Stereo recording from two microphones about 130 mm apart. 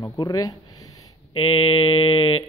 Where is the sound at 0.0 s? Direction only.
30° left (ahead or behind).